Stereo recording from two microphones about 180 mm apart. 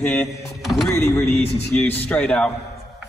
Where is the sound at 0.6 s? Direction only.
Centre (ahead or behind).